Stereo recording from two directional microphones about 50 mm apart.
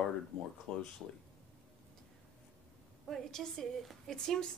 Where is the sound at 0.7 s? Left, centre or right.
Centre.